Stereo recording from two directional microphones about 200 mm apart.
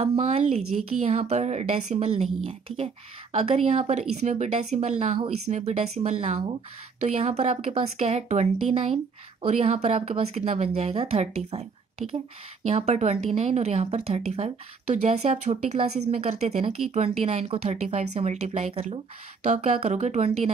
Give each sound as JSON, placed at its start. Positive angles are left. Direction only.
{"t": 0.0, "sound": "speech", "side_deg": -30}
{"t": 0.6, "sound": "a woman's voice", "side_deg": -90}
{"t": 1.0, "sound": "speech", "side_deg": -30}
{"t": 12.0, "sound": "speech", "side_deg": 0}
{"t": 12.6, "sound": "speech", "side_deg": -30}